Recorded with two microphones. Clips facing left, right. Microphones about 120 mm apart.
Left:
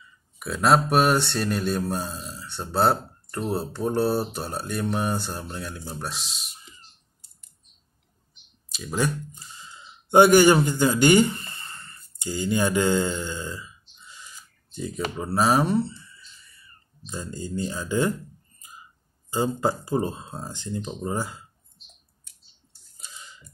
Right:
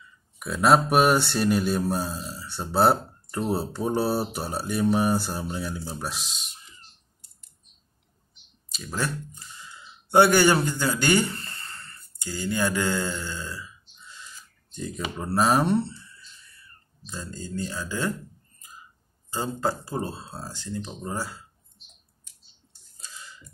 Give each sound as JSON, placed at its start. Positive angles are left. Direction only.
{"t": 0.4, "sound": "mantra", "side_deg": 0}
{"t": 3.3, "sound": "speech", "side_deg": -10}
{"t": 8.7, "sound": "a sound", "side_deg": 10}
{"t": 14.7, "sound": "mantra", "side_deg": 5}
{"t": 17.0, "sound": "speech", "side_deg": 15}
{"t": 19.3, "sound": "speech", "side_deg": 15}
{"t": 22.9, "sound": "a sound", "side_deg": 20}